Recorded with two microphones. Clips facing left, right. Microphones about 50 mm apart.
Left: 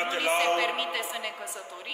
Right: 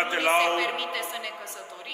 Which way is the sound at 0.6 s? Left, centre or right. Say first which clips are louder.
Even; centre.